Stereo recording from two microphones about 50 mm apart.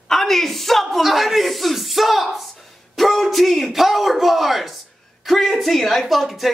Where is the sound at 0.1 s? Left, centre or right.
Centre.